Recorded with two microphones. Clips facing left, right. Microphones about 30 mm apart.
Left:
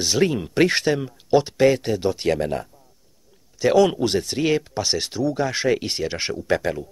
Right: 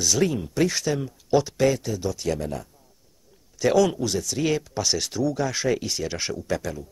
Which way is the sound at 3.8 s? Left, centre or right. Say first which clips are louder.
Left 4 dB; left.